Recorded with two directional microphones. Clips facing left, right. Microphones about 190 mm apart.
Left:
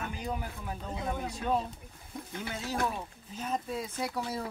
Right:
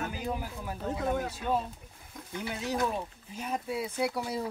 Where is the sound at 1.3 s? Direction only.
5° right (ahead or behind).